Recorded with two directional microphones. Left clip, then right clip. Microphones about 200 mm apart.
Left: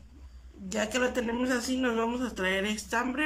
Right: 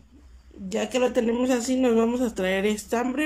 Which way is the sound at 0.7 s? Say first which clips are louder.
Right 5 dB; 15° right (ahead or behind).